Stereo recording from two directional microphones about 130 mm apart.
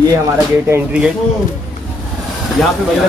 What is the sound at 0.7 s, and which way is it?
Speech, 10° right (ahead or behind).